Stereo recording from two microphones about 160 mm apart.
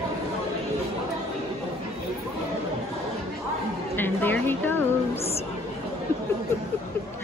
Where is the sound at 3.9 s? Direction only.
10° left (ahead or behind).